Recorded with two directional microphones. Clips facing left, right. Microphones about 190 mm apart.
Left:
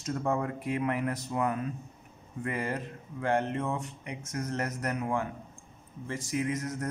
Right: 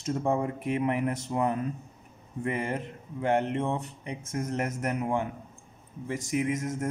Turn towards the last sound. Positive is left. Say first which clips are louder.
# right 3 dB
turn(degrees=-20)  # may be behind; listen again after turning